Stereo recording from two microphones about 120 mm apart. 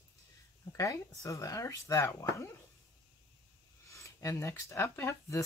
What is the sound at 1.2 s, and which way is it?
Speech, 30° left (ahead or behind).